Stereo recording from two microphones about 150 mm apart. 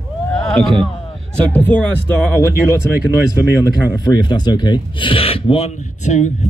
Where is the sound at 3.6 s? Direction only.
25° left (ahead or behind).